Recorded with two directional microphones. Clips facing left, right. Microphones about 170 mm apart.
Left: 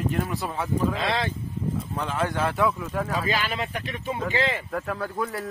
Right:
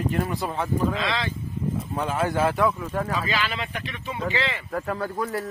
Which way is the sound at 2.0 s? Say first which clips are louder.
Right 3 dB; 10° right (ahead or behind).